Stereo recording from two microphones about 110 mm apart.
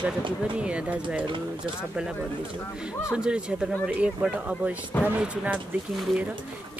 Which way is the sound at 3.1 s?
10° right (ahead or behind).